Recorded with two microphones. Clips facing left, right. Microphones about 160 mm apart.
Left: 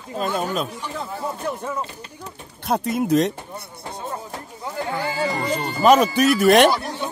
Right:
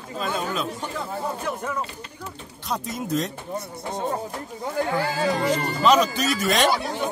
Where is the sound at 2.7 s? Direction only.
60° left (ahead or behind).